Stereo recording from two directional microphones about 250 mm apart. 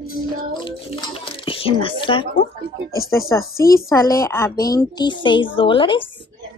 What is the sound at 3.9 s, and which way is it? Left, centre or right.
A woman's voice, centre.